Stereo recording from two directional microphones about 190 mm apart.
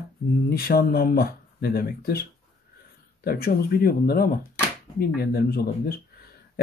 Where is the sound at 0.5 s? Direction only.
55° left (ahead or behind).